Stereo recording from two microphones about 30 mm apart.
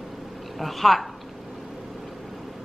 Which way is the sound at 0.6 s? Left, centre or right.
Centre.